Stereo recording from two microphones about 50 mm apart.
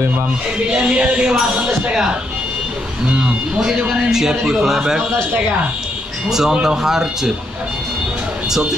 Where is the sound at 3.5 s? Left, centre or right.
Centre.